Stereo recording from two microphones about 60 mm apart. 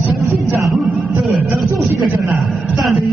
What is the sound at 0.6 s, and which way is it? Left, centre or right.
Music, centre.